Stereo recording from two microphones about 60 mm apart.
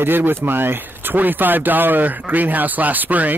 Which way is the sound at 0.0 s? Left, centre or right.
Right.